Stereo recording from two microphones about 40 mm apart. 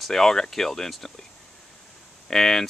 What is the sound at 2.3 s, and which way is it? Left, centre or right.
Speech, centre.